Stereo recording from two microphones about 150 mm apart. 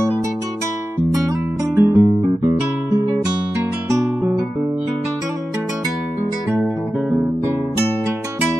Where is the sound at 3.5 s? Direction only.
20° right (ahead or behind).